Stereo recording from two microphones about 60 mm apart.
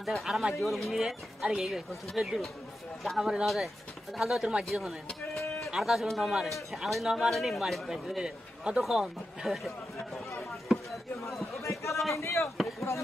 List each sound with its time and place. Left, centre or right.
0.0 s a man's voice: centre
11.6 s a sound: left
12.1 s speech: left